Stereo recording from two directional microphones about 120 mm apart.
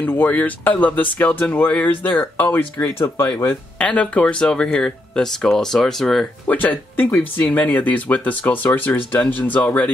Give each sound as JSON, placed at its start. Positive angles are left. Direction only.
{"t": 0.0, "sound": "speech", "side_deg": 15}
{"t": 6.4, "sound": "speech", "side_deg": 15}